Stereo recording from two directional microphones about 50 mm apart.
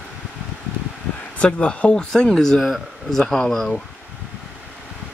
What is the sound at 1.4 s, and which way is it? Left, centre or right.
A man's voice, left.